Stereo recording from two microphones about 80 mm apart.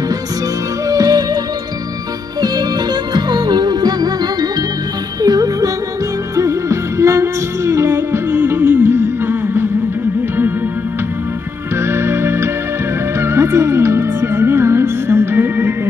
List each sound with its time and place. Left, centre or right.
0.8 s music: right
2.4 s music: right
6.3 s music: right
11.7 s music: right